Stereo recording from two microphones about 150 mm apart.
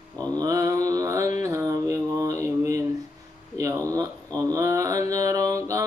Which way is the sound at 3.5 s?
20° right (ahead or behind).